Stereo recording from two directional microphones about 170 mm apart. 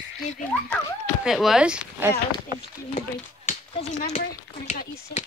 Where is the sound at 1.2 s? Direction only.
Centre (ahead or behind).